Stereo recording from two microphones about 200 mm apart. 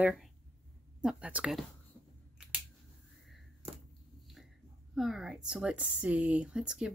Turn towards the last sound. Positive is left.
turn(degrees=-5)  # may be behind; listen again after turning